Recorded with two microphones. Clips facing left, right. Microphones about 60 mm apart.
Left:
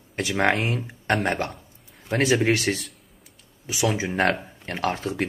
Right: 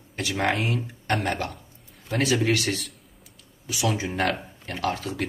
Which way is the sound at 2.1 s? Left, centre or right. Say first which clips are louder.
Left 2 dB; left.